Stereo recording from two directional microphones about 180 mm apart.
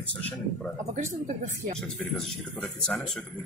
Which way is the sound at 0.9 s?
40° right (ahead or behind).